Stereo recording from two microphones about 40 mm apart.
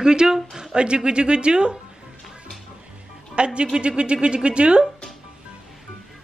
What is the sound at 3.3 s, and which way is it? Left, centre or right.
Speech, right.